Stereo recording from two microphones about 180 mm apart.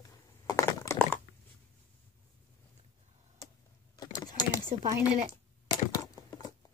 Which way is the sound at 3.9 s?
20° left (ahead or behind).